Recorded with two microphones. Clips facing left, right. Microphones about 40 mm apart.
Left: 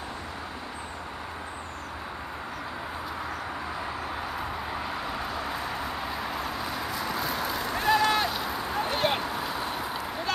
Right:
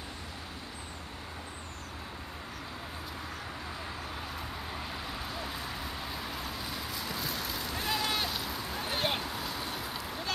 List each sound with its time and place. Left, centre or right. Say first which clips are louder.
4.4 s vehicle: left 7 dB; centre
8.9 s a sound: left 4 dB; centre
9.2 s vehicle: left 6 dB; centre